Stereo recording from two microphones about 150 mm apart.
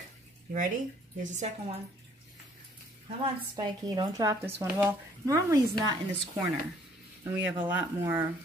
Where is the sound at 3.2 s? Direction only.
25° right (ahead or behind).